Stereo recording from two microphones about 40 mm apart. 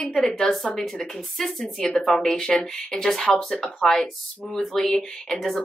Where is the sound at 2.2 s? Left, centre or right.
Centre.